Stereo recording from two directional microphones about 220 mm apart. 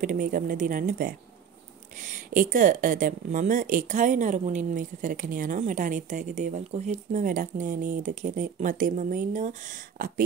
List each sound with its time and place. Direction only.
0.0 s speech: 40° right (ahead or behind)